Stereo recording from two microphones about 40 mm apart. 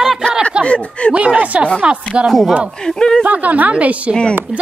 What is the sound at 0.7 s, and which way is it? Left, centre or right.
Speech, left.